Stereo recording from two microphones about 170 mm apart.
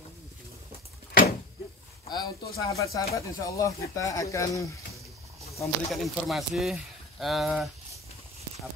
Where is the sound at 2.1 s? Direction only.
20° left (ahead or behind).